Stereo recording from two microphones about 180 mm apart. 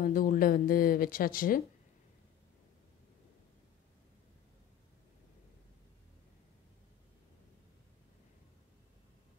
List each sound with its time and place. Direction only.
0.0 s speech: 50° left (ahead or behind)